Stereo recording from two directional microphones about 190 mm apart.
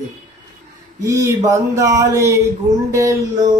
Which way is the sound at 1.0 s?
15° right (ahead or behind).